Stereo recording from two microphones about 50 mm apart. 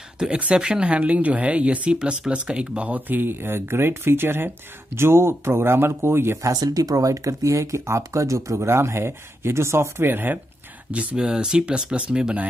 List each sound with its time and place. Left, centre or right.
0.2 s speech: right
2.9 s speech: right
7.2 s speech: right
10.9 s speech: right
11.1 s speech: centre